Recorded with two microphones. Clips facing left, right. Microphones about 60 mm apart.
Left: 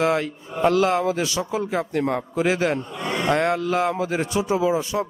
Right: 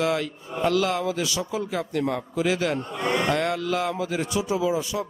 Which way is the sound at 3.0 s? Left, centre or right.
Right.